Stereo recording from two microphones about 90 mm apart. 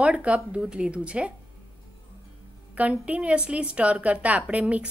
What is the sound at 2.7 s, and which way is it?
A woman's voice, 15° right (ahead or behind).